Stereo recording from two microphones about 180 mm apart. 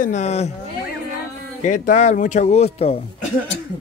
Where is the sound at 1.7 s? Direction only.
40° left (ahead or behind).